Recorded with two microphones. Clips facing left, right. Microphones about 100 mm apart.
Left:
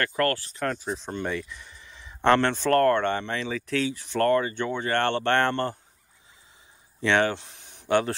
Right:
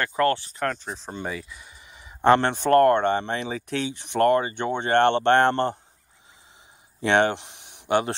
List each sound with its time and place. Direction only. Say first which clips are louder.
0.0 s speech: right 3 dB; 15° right (ahead or behind)
0.6 s speech: right 1 dB; centre (ahead or behind); by 5.8 s 25° right (ahead or behind)
7.0 s speech: right 2 dB; 25° right (ahead or behind)